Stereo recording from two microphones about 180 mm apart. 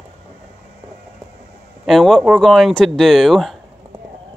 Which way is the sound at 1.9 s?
Centre (ahead or behind).